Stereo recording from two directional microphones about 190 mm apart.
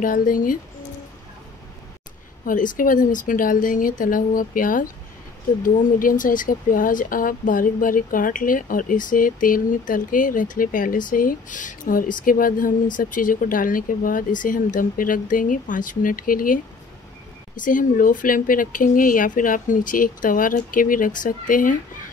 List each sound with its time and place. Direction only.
0.0 s speech: 45° left (ahead or behind)
2.4 s speech: 45° left (ahead or behind)
17.6 s speech: 45° left (ahead or behind)